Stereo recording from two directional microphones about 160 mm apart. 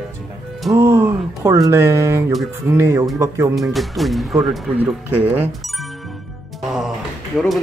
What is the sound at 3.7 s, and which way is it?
Speech, centre (ahead or behind).